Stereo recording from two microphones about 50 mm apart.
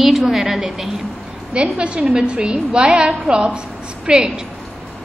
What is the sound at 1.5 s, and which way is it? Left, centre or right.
A woman's voice, right.